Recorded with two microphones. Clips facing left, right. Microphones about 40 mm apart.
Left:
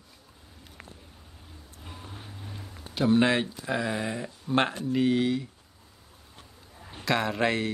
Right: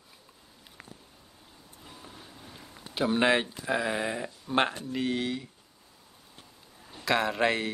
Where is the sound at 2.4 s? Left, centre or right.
Centre.